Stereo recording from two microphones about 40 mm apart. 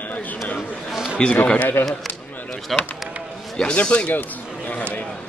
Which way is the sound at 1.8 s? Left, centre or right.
Left.